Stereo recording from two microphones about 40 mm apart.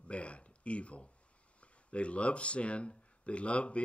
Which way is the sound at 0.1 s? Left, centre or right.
Left.